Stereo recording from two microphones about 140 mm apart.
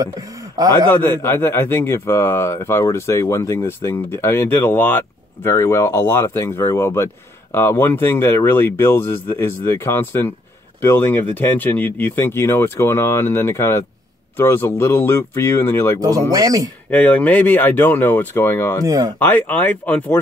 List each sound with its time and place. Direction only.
0.0 s speech: 25° right (ahead or behind)
0.8 s speech: 15° left (ahead or behind)
16.0 s speech: 25° right (ahead or behind)
16.9 s speech: 10° left (ahead or behind)
18.9 s speech: 25° right (ahead or behind)
19.1 s speech: 10° left (ahead or behind)